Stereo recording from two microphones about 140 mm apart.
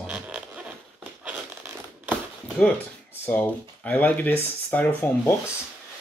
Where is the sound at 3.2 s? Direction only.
15° left (ahead or behind).